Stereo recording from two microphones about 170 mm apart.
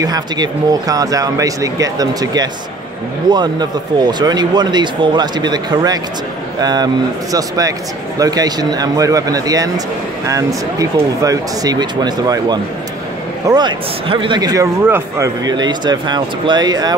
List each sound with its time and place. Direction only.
0.0 s speech: 20° right (ahead or behind)